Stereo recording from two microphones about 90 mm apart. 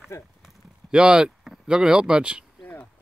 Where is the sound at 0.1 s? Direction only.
30° left (ahead or behind).